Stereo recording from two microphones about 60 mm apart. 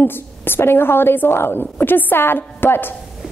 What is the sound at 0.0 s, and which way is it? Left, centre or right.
A woman's voice, left.